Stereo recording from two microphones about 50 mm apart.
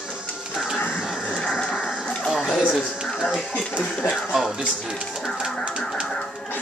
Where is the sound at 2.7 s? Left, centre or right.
Centre.